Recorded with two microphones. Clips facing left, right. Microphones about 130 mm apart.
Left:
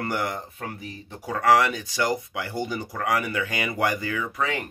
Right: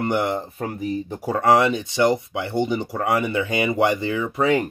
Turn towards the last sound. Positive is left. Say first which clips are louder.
# right 8 dB
turn(degrees=-35)  # may be behind; listen again after turning